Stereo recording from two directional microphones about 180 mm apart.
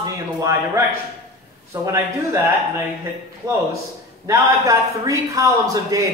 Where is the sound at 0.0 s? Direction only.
20° right (ahead or behind).